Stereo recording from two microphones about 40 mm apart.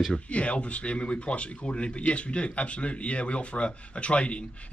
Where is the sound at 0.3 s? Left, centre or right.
Left.